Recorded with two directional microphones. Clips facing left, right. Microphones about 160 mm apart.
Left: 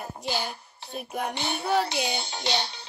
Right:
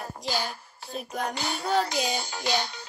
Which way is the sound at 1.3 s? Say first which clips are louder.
Left 1 dB; 25° left (ahead or behind).